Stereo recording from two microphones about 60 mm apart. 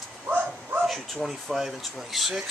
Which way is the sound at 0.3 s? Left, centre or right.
Right.